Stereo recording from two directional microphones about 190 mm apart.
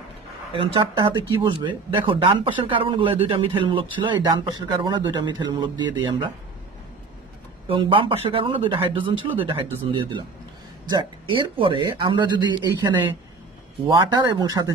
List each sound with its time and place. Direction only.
0.5 s speech: 25° right (ahead or behind)
7.6 s speech: 25° right (ahead or behind)